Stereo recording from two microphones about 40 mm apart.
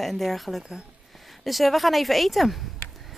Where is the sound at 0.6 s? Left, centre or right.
Centre.